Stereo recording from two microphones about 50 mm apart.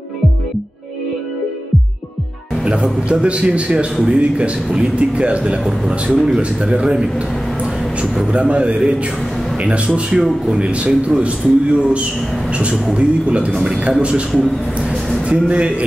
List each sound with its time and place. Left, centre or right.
2.6 s a man's voice: right
5.6 s a man's voice: centre
6.6 s a man's voice: right
7.0 s a sound: right
8.3 s a man's voice: right
10.2 s speech: centre
10.6 s a man's voice: right
15.2 s a man's voice: right